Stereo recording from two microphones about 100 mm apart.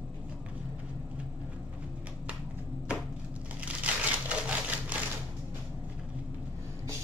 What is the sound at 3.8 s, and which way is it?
Crushing, 15° right (ahead or behind).